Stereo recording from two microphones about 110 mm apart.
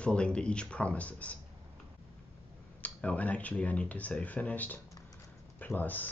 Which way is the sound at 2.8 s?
10° left (ahead or behind).